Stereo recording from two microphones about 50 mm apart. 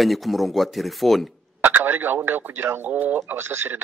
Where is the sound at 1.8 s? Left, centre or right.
Right.